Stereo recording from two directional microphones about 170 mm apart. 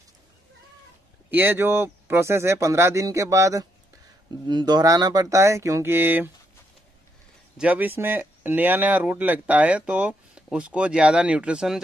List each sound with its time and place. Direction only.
1.3 s speech: 10° right (ahead or behind)
7.5 s speech: 10° right (ahead or behind)